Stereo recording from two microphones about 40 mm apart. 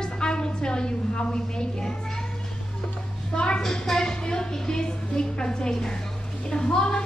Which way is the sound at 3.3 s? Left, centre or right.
Left.